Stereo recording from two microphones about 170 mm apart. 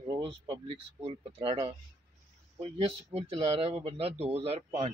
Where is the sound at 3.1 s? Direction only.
35° right (ahead or behind).